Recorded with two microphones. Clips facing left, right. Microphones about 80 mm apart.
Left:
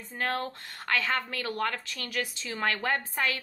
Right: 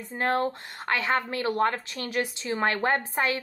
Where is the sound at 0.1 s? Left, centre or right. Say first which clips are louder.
Right 6 dB; right.